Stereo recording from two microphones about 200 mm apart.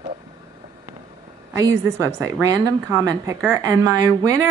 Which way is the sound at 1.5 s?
15° right (ahead or behind).